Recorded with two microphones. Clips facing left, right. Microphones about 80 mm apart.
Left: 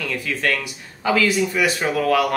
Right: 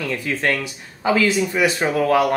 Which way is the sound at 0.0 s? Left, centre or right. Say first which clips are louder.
Right 2 dB; right.